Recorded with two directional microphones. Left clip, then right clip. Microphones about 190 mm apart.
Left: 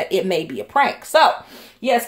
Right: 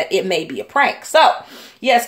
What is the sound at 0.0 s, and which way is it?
Speech, centre (ahead or behind).